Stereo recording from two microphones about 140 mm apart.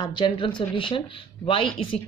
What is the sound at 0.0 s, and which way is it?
A woman's voice, 30° left (ahead or behind).